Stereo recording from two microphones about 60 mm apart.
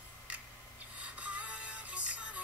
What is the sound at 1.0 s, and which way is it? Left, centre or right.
Music, right.